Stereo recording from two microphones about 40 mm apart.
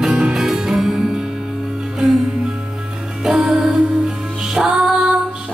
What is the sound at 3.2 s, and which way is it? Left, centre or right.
Music, centre.